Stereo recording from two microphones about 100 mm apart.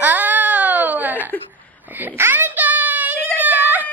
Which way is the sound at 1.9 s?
20° right (ahead or behind).